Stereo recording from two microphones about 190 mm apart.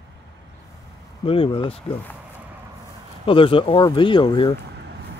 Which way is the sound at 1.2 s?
30° left (ahead or behind).